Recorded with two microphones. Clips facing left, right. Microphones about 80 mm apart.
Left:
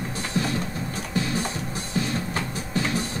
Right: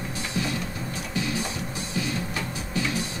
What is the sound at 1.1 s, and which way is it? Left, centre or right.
Music, left.